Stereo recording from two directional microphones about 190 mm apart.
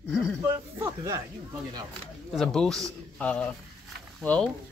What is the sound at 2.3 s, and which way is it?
Speech, centre (ahead or behind).